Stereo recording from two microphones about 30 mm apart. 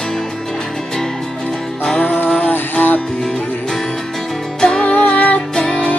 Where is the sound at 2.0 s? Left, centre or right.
Left.